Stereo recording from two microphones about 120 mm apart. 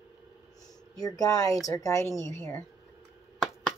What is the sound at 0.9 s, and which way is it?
A woman's voice, 30° left (ahead or behind).